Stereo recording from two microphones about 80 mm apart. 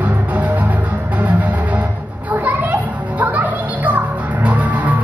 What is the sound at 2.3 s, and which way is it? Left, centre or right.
Children playing, right.